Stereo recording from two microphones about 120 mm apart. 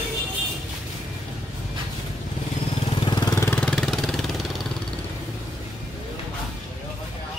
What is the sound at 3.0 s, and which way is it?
Vehicle, 35° left (ahead or behind).